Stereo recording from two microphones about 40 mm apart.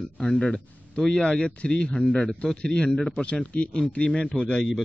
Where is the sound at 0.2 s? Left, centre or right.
Centre.